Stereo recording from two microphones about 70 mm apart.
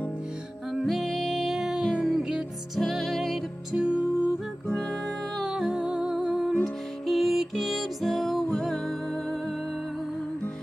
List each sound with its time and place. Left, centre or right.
0.7 s music: centre
3.7 s music: centre
4.6 s music: centre
5.0 s music: centre